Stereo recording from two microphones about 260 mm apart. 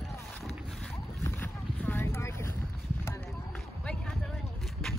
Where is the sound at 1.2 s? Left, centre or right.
Centre.